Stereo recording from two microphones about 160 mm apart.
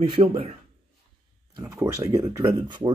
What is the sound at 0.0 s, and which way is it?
Speech, 35° right (ahead or behind).